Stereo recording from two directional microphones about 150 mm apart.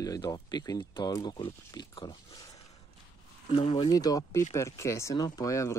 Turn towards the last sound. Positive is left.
turn(degrees=20)  # may be behind; listen again after turning